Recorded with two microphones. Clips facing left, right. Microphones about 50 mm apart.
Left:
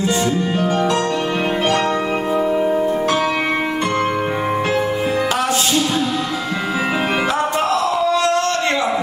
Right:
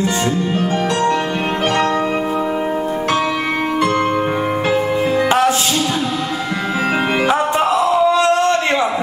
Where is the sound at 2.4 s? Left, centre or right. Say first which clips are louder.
Left 2 dB; centre.